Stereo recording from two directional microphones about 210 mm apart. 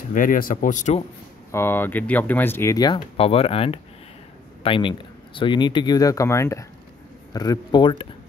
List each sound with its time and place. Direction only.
0.1 s speech: 40° left (ahead or behind)
1.5 s speech: 10° left (ahead or behind)